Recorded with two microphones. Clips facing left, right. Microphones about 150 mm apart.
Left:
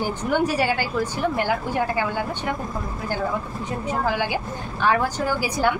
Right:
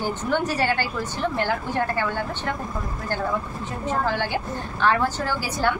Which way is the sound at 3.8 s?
10° left (ahead or behind).